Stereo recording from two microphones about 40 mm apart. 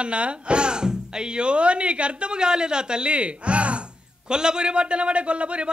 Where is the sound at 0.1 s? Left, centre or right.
Right.